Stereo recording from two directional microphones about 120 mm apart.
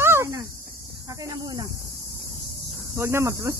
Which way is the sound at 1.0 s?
30° right (ahead or behind).